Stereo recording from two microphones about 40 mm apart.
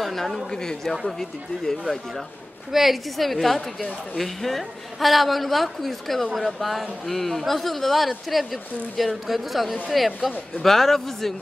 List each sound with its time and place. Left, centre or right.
0.0 s a sound: centre
0.5 s a woman's voice: centre
2.7 s a woman's voice: centre